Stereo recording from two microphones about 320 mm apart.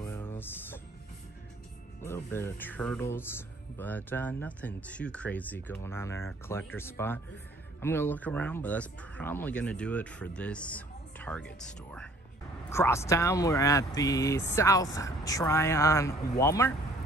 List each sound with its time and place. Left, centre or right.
0.0 s music: centre
2.0 s speech: centre